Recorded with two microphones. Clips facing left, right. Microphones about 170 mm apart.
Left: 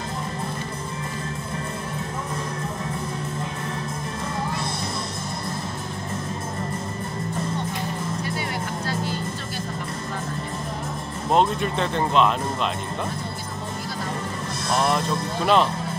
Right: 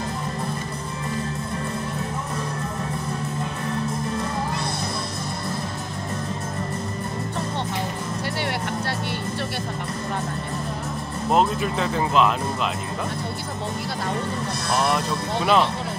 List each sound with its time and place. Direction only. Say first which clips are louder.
8.3 s music: right 2 dB; 70° right (ahead or behind)
11.3 s speech: even; 5° right (ahead or behind)
15.4 s speech: even; centre (ahead or behind)